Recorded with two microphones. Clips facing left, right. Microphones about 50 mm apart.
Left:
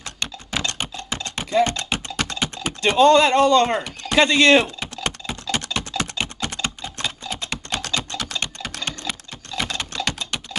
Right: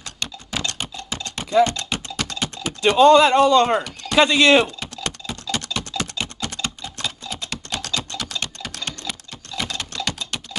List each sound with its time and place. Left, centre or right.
0.0 s typing: left
3.0 s speech: centre
4.7 s typing: left